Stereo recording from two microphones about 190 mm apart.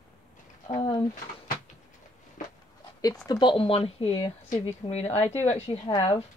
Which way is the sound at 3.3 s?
25° left (ahead or behind).